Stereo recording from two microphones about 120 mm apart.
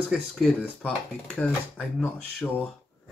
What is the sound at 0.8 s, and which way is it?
Speech, 10° left (ahead or behind).